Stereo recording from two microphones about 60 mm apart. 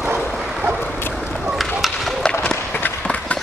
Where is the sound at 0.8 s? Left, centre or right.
Left.